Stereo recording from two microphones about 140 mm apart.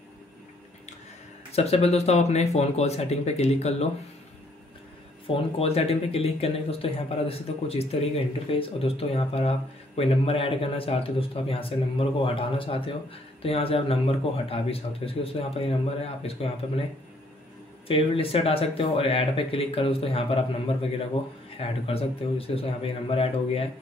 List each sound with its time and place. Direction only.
1.5 s speech: 45° left (ahead or behind)
5.2 s speech: 45° left (ahead or behind)
17.8 s speech: 40° left (ahead or behind)